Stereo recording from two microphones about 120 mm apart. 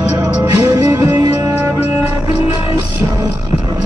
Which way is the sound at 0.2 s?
30° right (ahead or behind).